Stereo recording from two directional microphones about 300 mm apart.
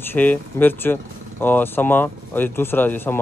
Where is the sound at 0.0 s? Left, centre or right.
Centre.